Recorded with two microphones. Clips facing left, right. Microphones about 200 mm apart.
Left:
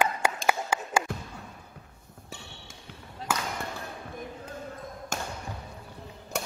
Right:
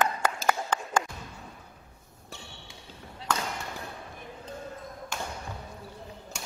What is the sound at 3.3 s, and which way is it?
Basketball bounce, 5° left (ahead or behind).